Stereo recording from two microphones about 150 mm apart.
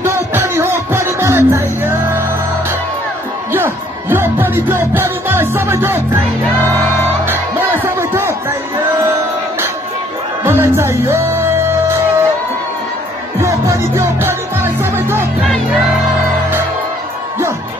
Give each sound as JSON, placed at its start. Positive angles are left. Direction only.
{"t": 0.0, "sound": "music", "side_deg": -15}
{"t": 3.5, "sound": "music", "side_deg": -15}
{"t": 7.2, "sound": "music", "side_deg": -15}
{"t": 10.4, "sound": "music", "side_deg": -15}
{"t": 13.4, "sound": "music", "side_deg": -20}